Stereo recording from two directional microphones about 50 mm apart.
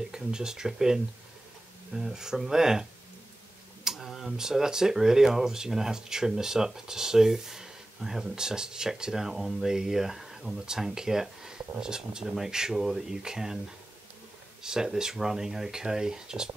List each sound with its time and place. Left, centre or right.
0.1 s speech: centre
3.8 s a sound: centre
4.1 s speech: centre
14.6 s speech: centre